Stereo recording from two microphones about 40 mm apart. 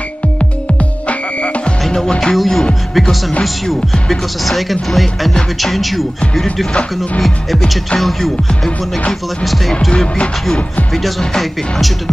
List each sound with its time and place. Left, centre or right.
1.9 s music: centre
2.3 s speech: centre
8.0 s music: centre
9.9 s music: left